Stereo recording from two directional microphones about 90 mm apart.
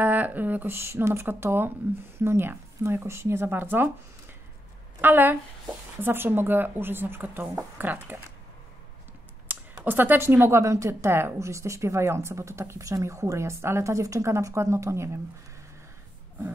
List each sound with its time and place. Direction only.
0.0 s speech: 20° right (ahead or behind)
5.0 s speech: 20° right (ahead or behind)
9.5 s speech: 20° right (ahead or behind)